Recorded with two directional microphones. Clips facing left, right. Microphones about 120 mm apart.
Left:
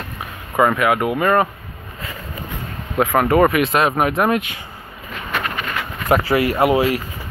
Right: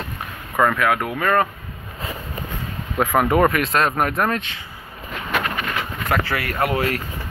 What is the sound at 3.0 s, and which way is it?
Speech, centre (ahead or behind).